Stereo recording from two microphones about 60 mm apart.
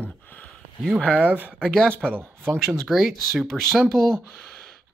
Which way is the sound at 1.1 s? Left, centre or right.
Right.